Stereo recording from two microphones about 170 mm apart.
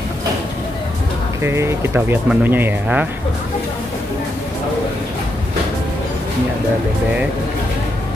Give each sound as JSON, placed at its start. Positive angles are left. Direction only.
{"t": 1.4, "sound": "speech", "side_deg": -15}